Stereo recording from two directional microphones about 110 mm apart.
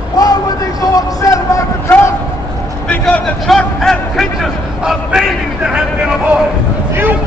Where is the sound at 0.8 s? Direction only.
35° left (ahead or behind).